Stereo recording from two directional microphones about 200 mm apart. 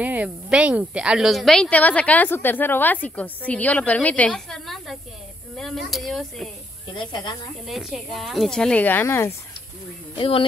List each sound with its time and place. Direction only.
0.0 s a woman's voice: 5° right (ahead or behind)
7.0 s speech: 20° left (ahead or behind)
7.6 s speech: centre (ahead or behind)
10.1 s speech: 25° left (ahead or behind)